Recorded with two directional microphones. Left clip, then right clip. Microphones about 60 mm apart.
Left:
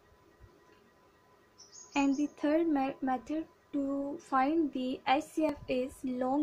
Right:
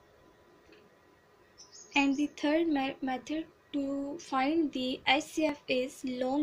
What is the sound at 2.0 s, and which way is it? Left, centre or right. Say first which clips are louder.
Speech: right 1 dB; centre.